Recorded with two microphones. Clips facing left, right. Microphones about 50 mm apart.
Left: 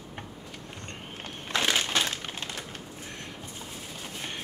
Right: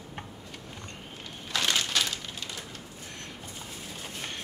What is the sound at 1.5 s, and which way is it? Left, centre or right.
Crushing, left.